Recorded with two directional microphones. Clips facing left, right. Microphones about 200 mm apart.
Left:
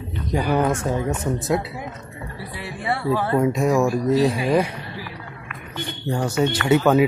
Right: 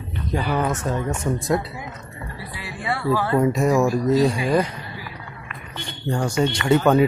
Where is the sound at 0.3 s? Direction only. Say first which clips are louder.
Left 3 dB; 15° left (ahead or behind).